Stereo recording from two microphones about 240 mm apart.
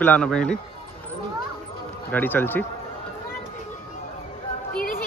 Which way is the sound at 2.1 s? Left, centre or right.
Centre.